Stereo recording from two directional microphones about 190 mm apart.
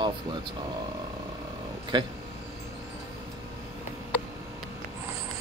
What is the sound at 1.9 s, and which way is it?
Speech, 25° right (ahead or behind).